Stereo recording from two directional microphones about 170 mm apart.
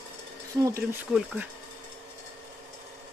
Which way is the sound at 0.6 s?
20° right (ahead or behind).